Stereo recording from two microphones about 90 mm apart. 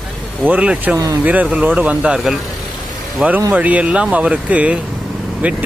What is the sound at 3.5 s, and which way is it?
Speech, 15° right (ahead or behind).